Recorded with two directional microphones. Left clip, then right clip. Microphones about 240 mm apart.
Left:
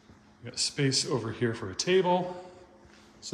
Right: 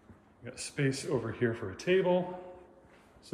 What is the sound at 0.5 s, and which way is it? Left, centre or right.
Speech, centre.